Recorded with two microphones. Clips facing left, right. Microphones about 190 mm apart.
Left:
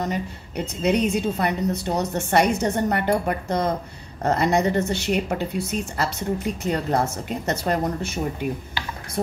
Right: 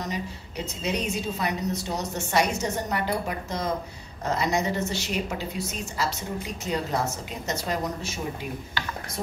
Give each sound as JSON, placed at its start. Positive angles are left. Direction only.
{"t": 0.0, "sound": "a woman's voice", "side_deg": 55}